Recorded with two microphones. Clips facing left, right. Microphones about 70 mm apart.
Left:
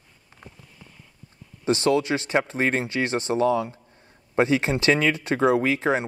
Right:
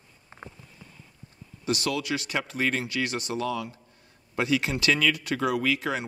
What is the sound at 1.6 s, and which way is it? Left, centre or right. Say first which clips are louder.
Speech: left 7 dB; left.